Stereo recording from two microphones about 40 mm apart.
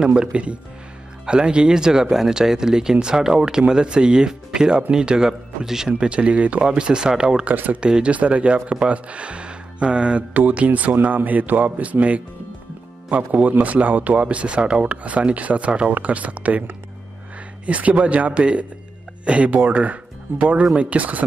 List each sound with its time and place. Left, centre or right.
0.0 s speech: right
7.5 s speech: right
7.8 s a man's voice: right
10.3 s a man's voice: right
14.2 s a man's voice: right
17.6 s a man's voice: right